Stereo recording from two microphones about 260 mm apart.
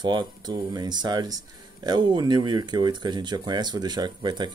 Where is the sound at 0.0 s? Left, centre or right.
Centre.